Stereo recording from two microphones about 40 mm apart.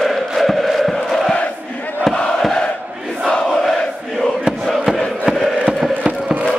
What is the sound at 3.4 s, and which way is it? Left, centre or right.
Crowd, centre.